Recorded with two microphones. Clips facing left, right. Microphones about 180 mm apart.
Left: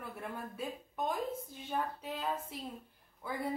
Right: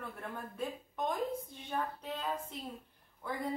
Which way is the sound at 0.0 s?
10° left (ahead or behind).